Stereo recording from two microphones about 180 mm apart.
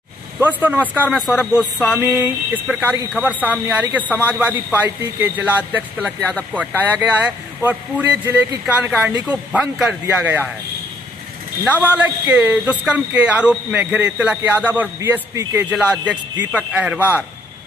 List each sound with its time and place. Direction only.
0.4 s speech: 10° right (ahead or behind)
11.6 s speech: 10° right (ahead or behind)